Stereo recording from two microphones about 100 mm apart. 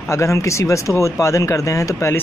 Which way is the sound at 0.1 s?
30° left (ahead or behind).